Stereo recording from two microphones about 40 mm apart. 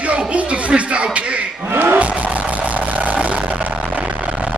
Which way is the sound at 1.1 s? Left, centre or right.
Right.